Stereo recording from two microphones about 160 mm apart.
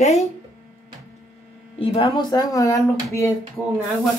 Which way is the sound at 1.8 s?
35° left (ahead or behind).